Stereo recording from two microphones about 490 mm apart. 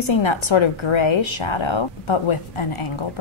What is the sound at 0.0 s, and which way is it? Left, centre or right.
A woman's voice, left.